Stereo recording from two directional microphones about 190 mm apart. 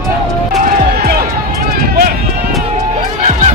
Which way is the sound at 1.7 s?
50° right (ahead or behind).